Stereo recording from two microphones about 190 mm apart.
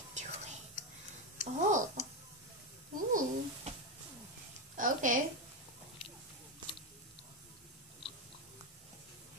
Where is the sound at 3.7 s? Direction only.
35° right (ahead or behind).